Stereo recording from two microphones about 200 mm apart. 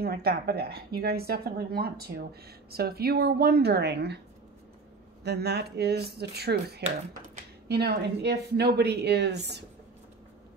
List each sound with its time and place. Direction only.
0.0 s speech: 50° right (ahead or behind)
5.2 s a woman's voice: 55° right (ahead or behind)